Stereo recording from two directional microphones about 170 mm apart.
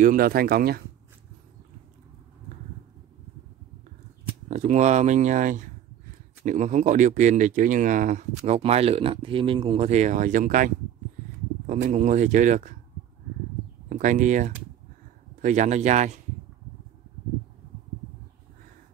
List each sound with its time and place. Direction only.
0.0 s speech: 55° right (ahead or behind)
4.5 s speech: 45° right (ahead or behind)
8.5 s speech: 35° right (ahead or behind)
13.8 s speech: 50° right (ahead or behind)